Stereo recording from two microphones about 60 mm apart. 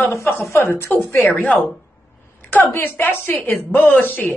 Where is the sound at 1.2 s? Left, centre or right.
Left.